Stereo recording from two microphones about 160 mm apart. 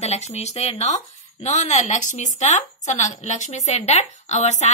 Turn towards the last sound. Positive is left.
turn(degrees=45)  # may be behind; listen again after turning